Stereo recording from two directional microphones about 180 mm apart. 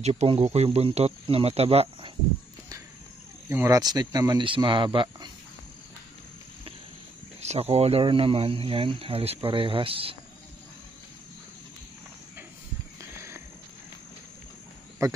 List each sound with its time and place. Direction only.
0.0 s speech: 35° right (ahead or behind)
3.4 s speech: 15° right (ahead or behind)
7.3 s speech: 35° right (ahead or behind)
15.0 s speech: 15° right (ahead or behind)